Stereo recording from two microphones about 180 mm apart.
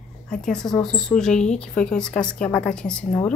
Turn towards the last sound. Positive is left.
turn(degrees=10)  # may be behind; listen again after turning